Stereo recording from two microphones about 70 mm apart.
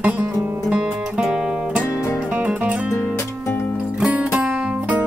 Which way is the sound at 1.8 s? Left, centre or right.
Left.